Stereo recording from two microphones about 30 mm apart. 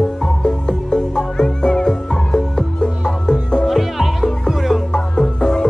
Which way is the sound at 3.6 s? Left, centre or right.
Centre.